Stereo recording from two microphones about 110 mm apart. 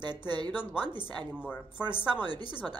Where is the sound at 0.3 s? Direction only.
45° right (ahead or behind).